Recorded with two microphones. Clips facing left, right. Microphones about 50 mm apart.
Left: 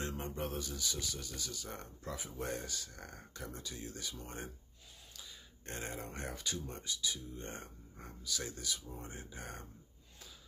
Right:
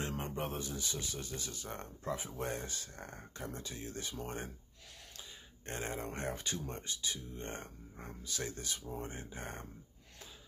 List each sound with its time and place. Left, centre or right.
0.2 s speech: right
5.7 s speech: right